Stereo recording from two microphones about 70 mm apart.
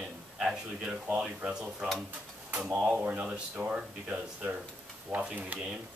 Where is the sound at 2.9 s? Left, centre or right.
Right.